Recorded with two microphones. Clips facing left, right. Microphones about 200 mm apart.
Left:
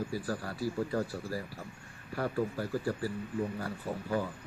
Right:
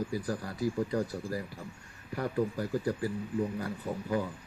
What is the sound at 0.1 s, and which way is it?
Speech, 15° right (ahead or behind).